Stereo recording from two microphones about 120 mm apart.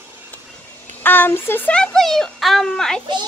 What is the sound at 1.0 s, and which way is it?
A child's voice, 15° left (ahead or behind).